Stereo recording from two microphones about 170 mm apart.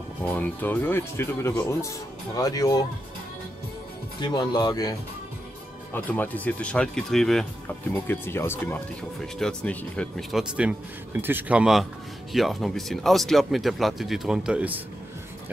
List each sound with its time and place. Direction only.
0.3 s speech: 10° left (ahead or behind)
4.2 s speech: 25° left (ahead or behind)
5.9 s speech: 10° left (ahead or behind)
7.9 s speech: 15° left (ahead or behind); by 14.8 s 5° right (ahead or behind)